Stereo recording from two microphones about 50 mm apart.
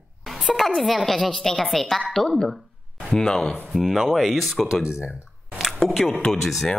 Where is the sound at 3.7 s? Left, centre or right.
Centre.